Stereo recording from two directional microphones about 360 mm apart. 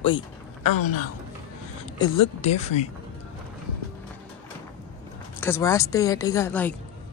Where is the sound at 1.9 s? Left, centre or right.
Centre.